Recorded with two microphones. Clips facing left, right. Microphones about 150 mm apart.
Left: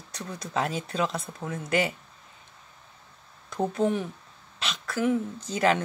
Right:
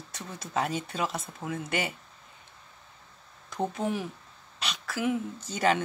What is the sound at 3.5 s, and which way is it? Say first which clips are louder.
Speech: left 4 dB; centre (ahead or behind).